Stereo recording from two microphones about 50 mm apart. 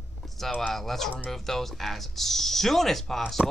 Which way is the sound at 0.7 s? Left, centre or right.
Centre.